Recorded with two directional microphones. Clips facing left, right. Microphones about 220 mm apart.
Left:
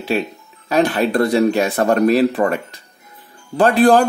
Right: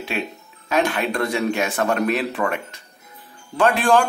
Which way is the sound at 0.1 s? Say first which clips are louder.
Left 8 dB; 35° left (ahead or behind).